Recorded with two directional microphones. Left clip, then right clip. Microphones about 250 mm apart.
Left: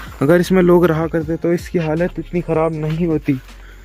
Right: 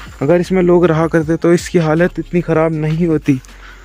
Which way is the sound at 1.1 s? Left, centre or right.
Right.